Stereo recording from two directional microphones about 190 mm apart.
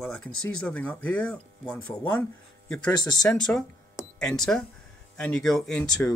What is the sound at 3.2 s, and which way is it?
Speech, 5° left (ahead or behind).